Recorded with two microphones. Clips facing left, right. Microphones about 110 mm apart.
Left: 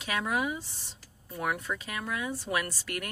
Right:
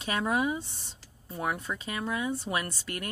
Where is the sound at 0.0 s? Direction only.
35° right (ahead or behind).